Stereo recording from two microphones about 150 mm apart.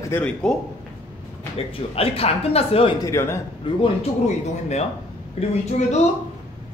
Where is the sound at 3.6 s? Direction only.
35° left (ahead or behind).